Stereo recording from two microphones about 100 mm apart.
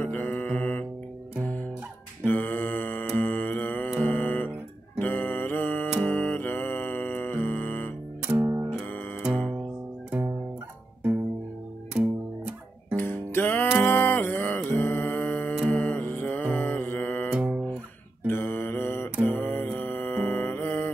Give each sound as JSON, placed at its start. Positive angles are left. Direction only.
{"t": 0.0, "sound": "mantra", "side_deg": 20}
{"t": 2.2, "sound": "mantra", "side_deg": 20}
{"t": 4.0, "sound": "music", "side_deg": 20}
{"t": 4.9, "sound": "mantra", "side_deg": 20}
{"t": 6.0, "sound": "music", "side_deg": 20}
{"t": 8.3, "sound": "music", "side_deg": -25}
{"t": 11.9, "sound": "music", "side_deg": -10}
{"t": 12.9, "sound": "music", "side_deg": 20}
{"t": 17.3, "sound": "music", "side_deg": -10}
{"t": 18.2, "sound": "mantra", "side_deg": 20}